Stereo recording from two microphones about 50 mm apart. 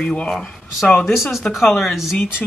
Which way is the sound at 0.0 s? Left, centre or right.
Left.